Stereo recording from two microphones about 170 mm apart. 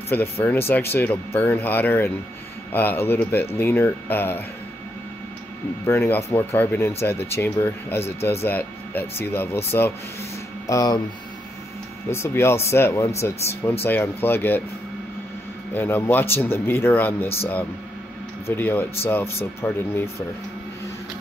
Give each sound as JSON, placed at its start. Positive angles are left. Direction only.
{"t": 0.1, "sound": "speech", "side_deg": 10}
{"t": 5.9, "sound": "speech", "side_deg": 15}
{"t": 12.1, "sound": "speech", "side_deg": 15}
{"t": 15.7, "sound": "speech", "side_deg": 10}